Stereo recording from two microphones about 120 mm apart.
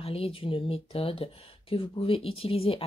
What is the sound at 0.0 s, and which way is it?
Speech, 50° left (ahead or behind).